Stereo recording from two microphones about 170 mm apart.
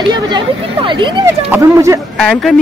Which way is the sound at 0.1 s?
25° right (ahead or behind).